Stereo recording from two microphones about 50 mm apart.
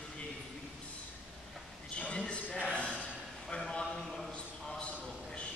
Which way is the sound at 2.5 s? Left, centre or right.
Left.